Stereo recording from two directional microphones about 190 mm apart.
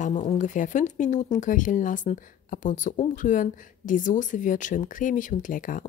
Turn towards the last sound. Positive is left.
turn(degrees=45)  # may be behind; listen again after turning